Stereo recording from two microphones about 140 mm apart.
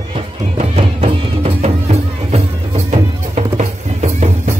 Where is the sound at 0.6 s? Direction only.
45° right (ahead or behind).